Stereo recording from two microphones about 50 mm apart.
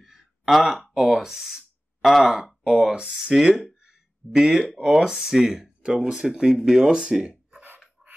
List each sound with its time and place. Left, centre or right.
0.0 s a sound: centre
0.9 s speech: centre
2.3 s speech: centre